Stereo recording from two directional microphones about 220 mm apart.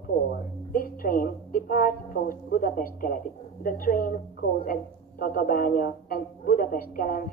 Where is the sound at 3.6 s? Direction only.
40° left (ahead or behind).